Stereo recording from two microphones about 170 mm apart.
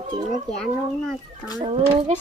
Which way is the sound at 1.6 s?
40° right (ahead or behind).